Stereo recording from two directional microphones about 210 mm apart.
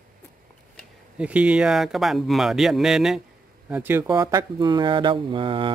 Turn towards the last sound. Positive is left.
turn(degrees=-25)  # may be behind; listen again after turning